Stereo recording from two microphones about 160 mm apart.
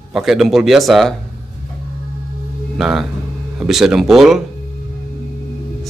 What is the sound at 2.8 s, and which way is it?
A man's voice, centre (ahead or behind).